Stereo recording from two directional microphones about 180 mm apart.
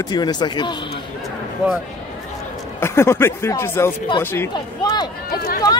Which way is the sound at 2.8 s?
15° left (ahead or behind).